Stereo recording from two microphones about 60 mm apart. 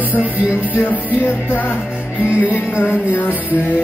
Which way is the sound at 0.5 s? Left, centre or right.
Left.